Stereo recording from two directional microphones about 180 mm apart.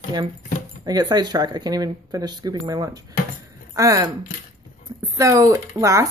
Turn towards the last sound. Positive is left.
turn(degrees=-15)  # may be behind; listen again after turning